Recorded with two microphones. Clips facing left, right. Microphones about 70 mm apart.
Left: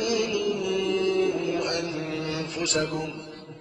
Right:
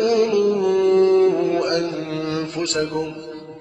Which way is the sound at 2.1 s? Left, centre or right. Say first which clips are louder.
Right 6 dB; right.